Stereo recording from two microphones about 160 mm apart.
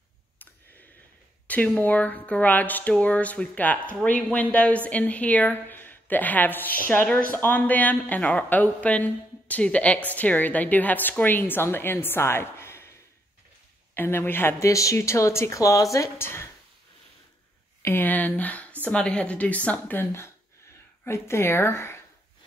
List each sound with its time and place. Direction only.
1.5 s a woman's voice: 10° left (ahead or behind)
13.9 s a woman's voice: 15° left (ahead or behind)
17.8 s a woman's voice: 10° left (ahead or behind)